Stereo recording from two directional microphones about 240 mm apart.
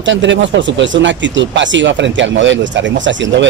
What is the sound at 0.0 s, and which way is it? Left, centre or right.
Speech, right.